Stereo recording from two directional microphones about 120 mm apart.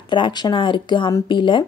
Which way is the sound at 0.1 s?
40° left (ahead or behind).